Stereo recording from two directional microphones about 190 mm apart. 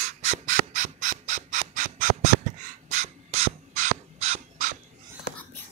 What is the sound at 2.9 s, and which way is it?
Ratchet, 35° right (ahead or behind).